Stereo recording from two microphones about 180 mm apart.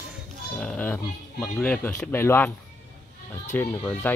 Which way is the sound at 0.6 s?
10° left (ahead or behind).